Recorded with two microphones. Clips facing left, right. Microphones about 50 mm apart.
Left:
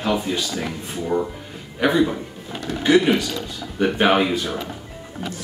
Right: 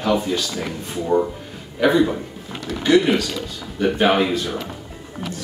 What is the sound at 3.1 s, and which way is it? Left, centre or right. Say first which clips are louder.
Speech: even; centre.